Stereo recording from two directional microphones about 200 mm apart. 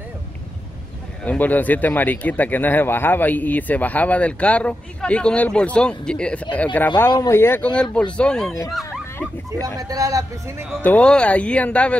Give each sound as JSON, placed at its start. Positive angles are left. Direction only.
{"t": 1.2, "sound": "speech", "side_deg": 10}
{"t": 8.7, "sound": "a sound", "side_deg": 0}
{"t": 9.8, "sound": "speech", "side_deg": -15}
{"t": 10.8, "sound": "speech", "side_deg": 5}